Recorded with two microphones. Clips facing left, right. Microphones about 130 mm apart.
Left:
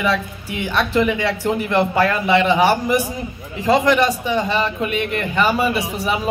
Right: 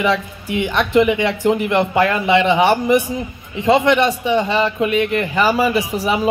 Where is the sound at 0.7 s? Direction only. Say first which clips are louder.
Right 3 dB; 20° right (ahead or behind).